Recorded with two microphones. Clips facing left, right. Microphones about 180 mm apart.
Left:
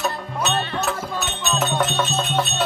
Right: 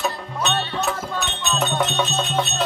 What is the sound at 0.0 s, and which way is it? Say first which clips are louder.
Speech: even; 5° left (ahead or behind).